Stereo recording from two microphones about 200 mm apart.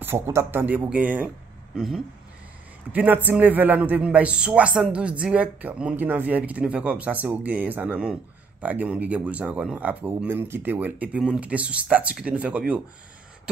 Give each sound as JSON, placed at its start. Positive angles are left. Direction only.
{"t": 0.0, "sound": "a man's voice", "side_deg": -10}
{"t": 2.9, "sound": "a man's voice", "side_deg": -10}